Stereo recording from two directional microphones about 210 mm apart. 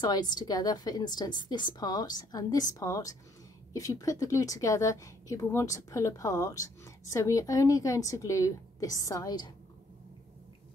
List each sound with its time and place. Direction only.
0.0 s a woman's voice: 20° left (ahead or behind)